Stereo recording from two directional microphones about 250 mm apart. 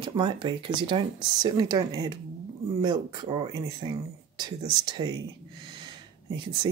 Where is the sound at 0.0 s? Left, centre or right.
Centre.